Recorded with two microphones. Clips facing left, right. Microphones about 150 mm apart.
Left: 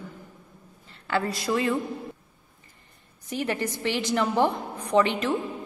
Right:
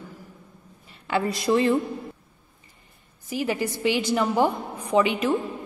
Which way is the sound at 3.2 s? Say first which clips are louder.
Right 2 dB; 5° right (ahead or behind).